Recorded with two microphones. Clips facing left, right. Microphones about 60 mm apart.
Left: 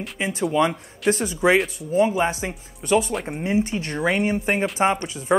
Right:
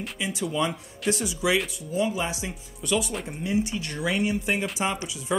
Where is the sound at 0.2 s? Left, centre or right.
Left.